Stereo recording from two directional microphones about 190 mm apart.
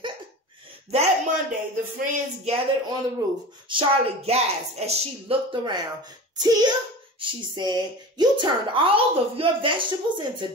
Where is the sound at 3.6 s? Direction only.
30° right (ahead or behind).